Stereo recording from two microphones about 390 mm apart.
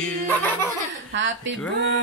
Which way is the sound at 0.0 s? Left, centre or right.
Centre.